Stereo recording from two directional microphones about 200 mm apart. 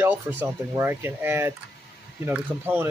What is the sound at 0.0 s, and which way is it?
Speech, 10° right (ahead or behind).